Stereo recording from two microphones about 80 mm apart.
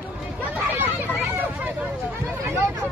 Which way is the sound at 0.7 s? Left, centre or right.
Right.